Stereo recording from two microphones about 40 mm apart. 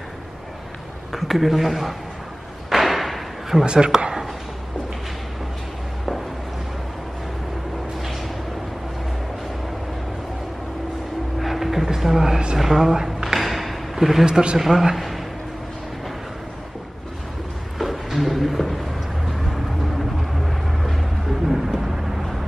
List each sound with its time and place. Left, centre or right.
1.1 s a man's voice: centre
2.7 s thump: centre
3.6 s speech: right
8.0 s a sound: centre
11.3 s vehicle: centre
12.5 s a sound: centre
14.2 s speech: right
14.6 s speech: centre
17.7 s a sound: centre
20.3 s vehicle: centre